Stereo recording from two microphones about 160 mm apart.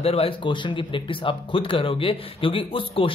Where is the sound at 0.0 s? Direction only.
40° left (ahead or behind).